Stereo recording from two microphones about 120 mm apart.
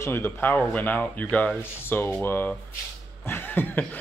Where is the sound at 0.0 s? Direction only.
20° left (ahead or behind).